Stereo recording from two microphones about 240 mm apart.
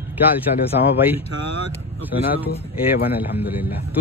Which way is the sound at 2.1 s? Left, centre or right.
Left.